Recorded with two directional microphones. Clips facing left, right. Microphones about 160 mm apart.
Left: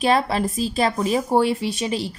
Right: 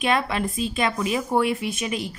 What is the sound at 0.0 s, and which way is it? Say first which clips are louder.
A woman's voice: left 4 dB; 35° left (ahead or behind).